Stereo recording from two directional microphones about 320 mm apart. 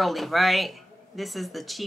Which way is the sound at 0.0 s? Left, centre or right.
Centre.